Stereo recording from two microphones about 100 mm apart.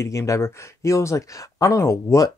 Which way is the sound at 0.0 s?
30° left (ahead or behind).